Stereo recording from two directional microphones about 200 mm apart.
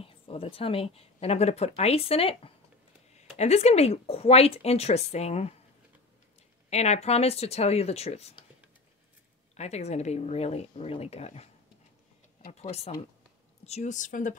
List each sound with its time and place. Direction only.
0.0 s speech: 30° left (ahead or behind)
6.7 s speech: 35° left (ahead or behind)
9.6 s speech: 35° left (ahead or behind)
12.4 s speech: 30° left (ahead or behind)